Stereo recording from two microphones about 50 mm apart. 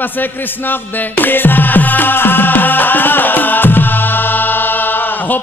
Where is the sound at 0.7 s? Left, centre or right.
Left.